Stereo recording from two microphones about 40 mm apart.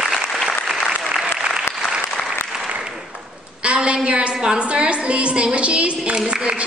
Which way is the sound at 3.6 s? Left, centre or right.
Right.